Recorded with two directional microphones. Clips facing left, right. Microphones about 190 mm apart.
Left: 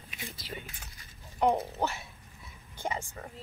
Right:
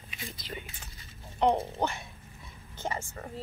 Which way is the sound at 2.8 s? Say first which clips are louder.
Even; 15° left (ahead or behind).